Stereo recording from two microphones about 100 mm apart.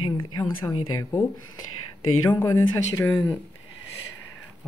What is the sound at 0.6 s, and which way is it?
Speech, 35° left (ahead or behind).